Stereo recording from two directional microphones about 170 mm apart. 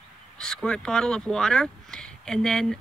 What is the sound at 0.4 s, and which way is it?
Speech, 5° left (ahead or behind).